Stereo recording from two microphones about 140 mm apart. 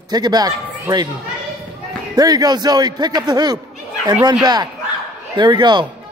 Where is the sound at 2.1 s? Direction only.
30° right (ahead or behind).